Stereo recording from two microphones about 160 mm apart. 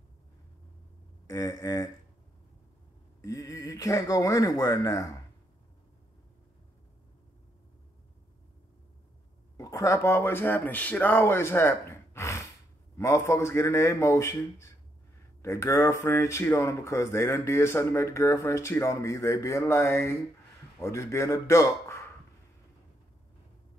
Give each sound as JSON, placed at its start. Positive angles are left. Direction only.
{"t": 1.2, "sound": "speech", "side_deg": 20}
{"t": 3.2, "sound": "speech", "side_deg": 20}
{"t": 9.6, "sound": "speech", "side_deg": 20}